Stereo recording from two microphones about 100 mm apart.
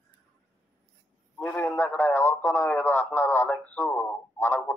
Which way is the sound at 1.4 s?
15° left (ahead or behind).